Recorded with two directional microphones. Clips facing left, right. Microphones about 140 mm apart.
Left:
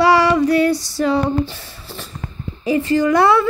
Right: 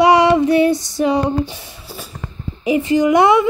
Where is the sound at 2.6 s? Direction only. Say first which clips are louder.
Right 1 dB; 15° right (ahead or behind).